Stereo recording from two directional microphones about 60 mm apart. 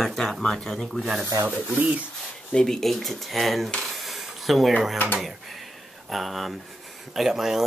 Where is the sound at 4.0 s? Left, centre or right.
Centre.